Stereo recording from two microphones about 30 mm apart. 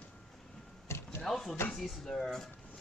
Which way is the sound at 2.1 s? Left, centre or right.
Centre.